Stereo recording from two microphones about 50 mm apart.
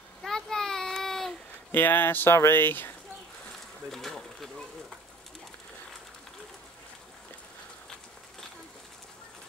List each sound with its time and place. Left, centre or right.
0.2 s a sound: centre
1.7 s speech: left
3.9 s speech: centre